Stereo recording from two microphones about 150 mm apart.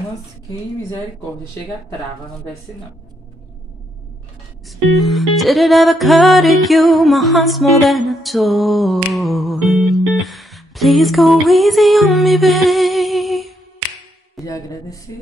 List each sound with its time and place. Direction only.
4.6 s music: centre (ahead or behind)
14.4 s speech: 20° left (ahead or behind)